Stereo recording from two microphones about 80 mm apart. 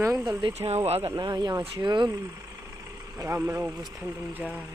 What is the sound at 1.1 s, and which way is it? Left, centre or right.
Speech, right.